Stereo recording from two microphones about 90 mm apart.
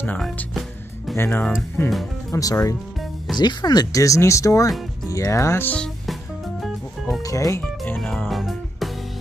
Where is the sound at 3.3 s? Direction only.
50° left (ahead or behind); by 5.6 s 30° left (ahead or behind).